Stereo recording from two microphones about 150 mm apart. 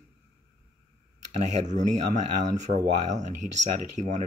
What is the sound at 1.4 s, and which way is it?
Speech, 50° right (ahead or behind).